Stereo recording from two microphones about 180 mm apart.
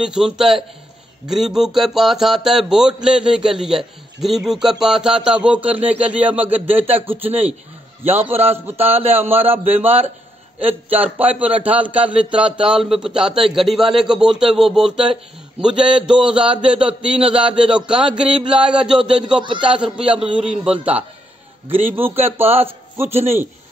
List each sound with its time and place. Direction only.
0.0 s a man's voice: 5° right (ahead or behind)
19.4 s a man's voice: 25° right (ahead or behind)
19.7 s a man's voice: 5° right (ahead or behind)